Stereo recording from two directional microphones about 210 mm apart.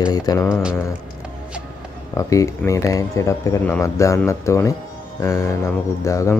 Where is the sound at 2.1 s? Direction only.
15° left (ahead or behind).